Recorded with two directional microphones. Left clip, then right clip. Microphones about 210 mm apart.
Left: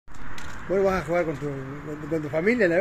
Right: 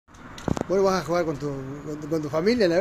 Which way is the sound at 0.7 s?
10° right (ahead or behind).